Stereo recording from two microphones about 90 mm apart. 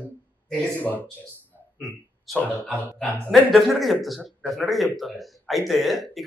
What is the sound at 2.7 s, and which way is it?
Speech, 15° left (ahead or behind).